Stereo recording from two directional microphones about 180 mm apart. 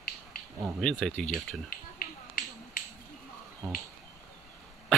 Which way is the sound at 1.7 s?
50° left (ahead or behind).